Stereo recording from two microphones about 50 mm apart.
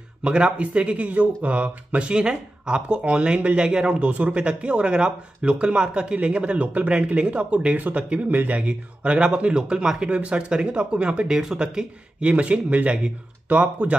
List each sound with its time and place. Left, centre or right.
0.2 s speech: right
8.5 s speech: right